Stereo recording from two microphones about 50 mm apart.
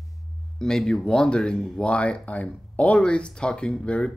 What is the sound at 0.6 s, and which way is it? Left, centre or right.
Speech, centre.